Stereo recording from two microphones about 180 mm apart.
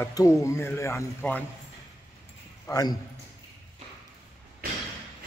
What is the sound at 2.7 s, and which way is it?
Speech, 20° left (ahead or behind).